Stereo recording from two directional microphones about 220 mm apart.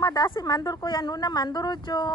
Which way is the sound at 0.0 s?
20° left (ahead or behind).